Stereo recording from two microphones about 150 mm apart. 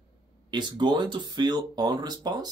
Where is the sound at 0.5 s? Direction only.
30° right (ahead or behind).